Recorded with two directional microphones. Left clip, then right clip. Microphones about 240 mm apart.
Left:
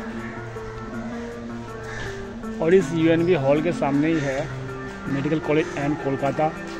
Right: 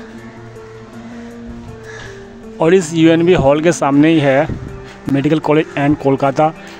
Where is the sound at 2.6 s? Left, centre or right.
Right.